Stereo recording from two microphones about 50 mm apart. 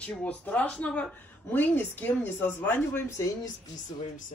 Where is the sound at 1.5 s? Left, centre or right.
Left.